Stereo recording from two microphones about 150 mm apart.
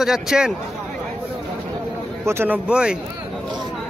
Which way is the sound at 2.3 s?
15° right (ahead or behind).